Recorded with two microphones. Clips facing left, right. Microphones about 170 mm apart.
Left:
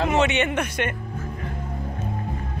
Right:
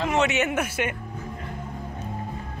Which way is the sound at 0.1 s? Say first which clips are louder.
Left 2 dB; centre (ahead or behind).